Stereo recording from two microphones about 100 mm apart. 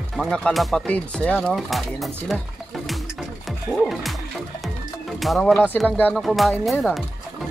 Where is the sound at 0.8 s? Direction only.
10° left (ahead or behind).